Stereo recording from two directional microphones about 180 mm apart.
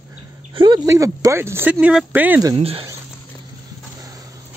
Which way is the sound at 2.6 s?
35° right (ahead or behind).